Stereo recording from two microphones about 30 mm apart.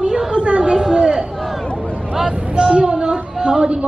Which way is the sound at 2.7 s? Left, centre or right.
Right.